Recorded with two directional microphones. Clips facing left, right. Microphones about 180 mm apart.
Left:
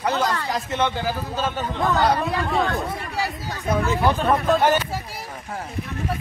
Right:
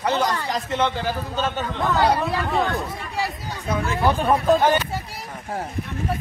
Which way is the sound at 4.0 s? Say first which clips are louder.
Right 4 dB; 10° right (ahead or behind).